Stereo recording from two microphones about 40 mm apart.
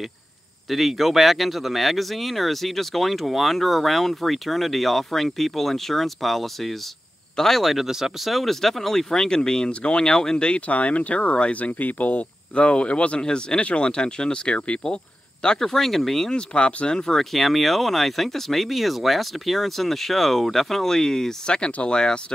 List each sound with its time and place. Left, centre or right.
0.7 s speech: centre
8.3 s speech: centre; by 10.6 s left
10.7 s speech: left
12.5 s speech: left
13.2 s speech: centre
13.6 s speech: left
15.6 s speech: centre
16.3 s speech: left
16.9 s speech: centre